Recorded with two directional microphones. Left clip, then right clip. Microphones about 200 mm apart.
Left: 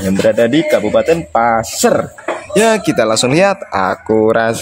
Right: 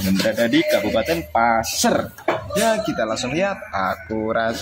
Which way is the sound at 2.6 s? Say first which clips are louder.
Left 10 dB; 60° left (ahead or behind).